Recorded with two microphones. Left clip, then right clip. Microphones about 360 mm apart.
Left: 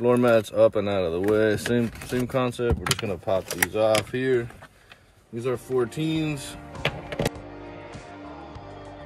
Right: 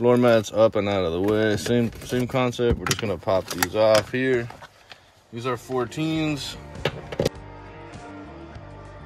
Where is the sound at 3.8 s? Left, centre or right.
Centre.